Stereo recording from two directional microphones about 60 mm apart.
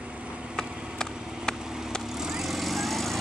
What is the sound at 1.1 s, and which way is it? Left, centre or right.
Vehicle, centre.